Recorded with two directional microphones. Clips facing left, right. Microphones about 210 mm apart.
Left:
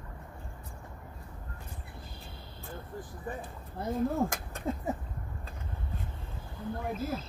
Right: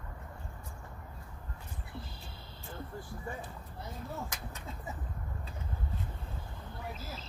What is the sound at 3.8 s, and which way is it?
Speech, 50° left (ahead or behind).